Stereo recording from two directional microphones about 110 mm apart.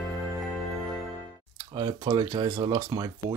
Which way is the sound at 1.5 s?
45° right (ahead or behind).